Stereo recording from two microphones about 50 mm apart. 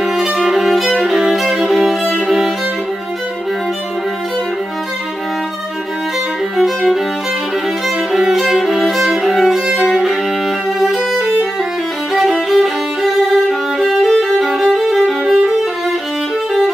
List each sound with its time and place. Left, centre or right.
0.0 s violin: centre
6.5 s violin: centre
8.1 s violin: centre
9.7 s violin: centre